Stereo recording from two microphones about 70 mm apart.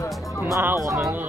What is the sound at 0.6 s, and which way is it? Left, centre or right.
Speech, right.